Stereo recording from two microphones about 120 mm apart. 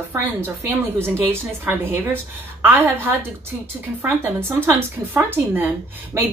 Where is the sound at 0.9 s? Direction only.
20° right (ahead or behind).